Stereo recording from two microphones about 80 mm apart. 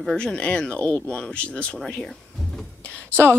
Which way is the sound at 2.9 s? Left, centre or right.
Centre.